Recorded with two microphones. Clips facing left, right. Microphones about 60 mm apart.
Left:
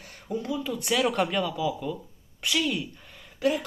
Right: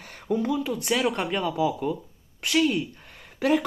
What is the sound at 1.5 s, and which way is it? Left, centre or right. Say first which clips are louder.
Speech: right 4 dB; right.